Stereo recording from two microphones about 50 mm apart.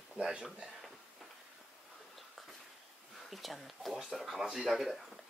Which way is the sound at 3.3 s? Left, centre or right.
Centre.